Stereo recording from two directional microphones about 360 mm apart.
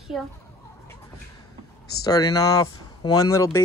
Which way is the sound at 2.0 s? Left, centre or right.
Centre.